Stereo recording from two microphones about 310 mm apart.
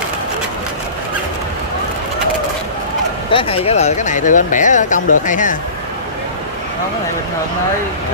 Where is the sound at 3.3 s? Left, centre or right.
Centre.